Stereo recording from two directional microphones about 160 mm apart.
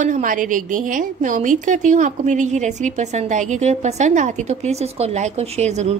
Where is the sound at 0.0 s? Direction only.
55° right (ahead or behind).